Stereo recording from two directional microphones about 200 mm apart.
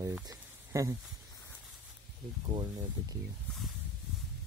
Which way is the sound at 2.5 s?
20° right (ahead or behind).